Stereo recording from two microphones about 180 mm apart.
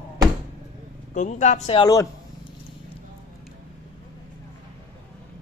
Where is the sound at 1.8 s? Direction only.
20° left (ahead or behind).